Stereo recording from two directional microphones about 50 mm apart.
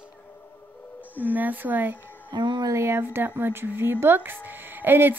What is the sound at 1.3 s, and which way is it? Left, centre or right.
Speech, right.